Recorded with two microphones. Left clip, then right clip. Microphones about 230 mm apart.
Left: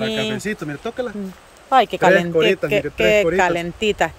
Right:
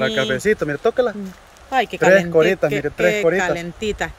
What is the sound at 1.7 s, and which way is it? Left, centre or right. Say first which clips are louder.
Speech: left 1 dB; centre.